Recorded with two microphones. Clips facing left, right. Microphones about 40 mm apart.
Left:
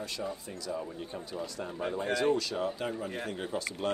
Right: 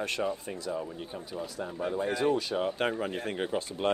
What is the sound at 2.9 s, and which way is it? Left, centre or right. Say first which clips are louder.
Speech: right 3 dB; right.